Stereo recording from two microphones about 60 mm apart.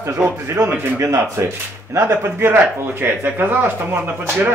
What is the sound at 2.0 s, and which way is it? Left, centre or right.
Speech, right.